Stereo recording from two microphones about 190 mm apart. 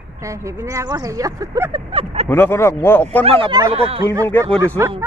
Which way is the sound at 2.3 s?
10° left (ahead or behind).